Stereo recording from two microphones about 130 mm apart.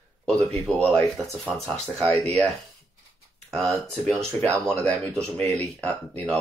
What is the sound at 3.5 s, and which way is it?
Speech, centre (ahead or behind).